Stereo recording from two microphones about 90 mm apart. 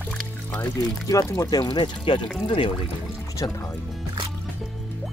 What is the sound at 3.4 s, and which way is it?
Speech, 45° left (ahead or behind).